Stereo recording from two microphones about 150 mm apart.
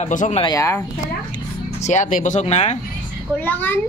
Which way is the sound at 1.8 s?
55° left (ahead or behind).